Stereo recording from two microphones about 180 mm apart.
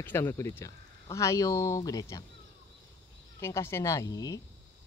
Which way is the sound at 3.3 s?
15° left (ahead or behind).